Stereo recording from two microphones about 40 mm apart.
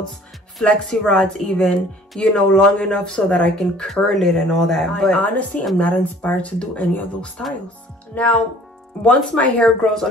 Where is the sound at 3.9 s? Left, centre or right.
Centre.